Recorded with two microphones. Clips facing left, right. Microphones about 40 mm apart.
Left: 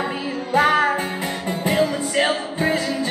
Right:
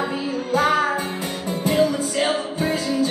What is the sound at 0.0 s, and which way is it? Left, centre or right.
Music, centre.